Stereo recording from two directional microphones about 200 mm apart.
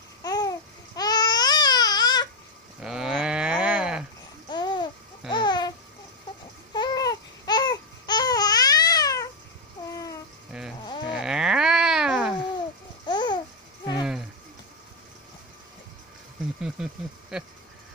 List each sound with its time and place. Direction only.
0.2 s babbling: 20° left (ahead or behind)
2.8 s livestock: 5° right (ahead or behind)
4.5 s babbling: 20° left (ahead or behind)
6.7 s babbling: 20° left (ahead or behind)
10.5 s sheep: 5° right (ahead or behind)
11.1 s livestock: 5° right (ahead or behind)
13.0 s babbling: 20° left (ahead or behind)
16.6 s a sound: 5° right (ahead or behind)